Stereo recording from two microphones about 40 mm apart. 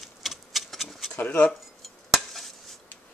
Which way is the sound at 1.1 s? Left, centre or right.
Left.